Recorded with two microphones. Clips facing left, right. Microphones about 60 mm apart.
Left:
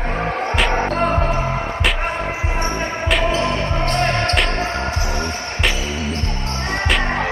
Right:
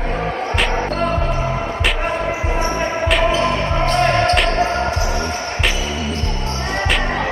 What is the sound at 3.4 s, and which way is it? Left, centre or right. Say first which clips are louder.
Music: right 2 dB; centre.